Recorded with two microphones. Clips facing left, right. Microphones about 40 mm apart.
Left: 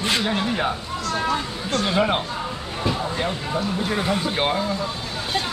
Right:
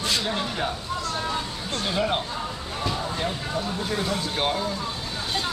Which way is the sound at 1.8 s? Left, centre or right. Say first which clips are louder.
Left 3 dB; centre.